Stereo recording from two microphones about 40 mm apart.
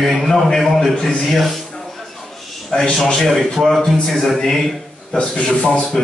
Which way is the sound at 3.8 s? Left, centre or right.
Centre.